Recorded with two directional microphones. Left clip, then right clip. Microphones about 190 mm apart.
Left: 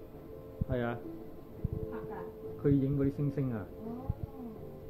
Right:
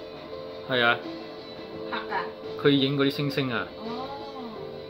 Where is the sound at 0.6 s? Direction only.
5° right (ahead or behind).